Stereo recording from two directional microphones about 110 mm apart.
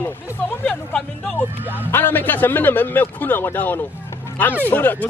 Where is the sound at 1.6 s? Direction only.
15° right (ahead or behind).